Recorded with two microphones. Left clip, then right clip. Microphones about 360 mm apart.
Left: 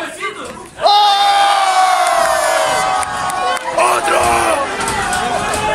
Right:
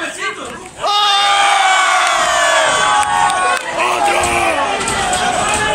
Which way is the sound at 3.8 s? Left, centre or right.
Left.